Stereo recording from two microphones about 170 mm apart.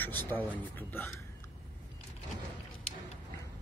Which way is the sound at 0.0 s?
10° left (ahead or behind).